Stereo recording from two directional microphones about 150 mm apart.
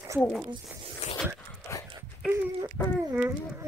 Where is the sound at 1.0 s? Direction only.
50° left (ahead or behind).